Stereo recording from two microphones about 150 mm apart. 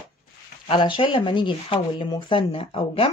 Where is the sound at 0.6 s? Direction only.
35° left (ahead or behind).